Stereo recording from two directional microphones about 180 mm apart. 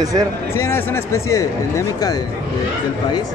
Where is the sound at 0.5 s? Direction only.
15° left (ahead or behind).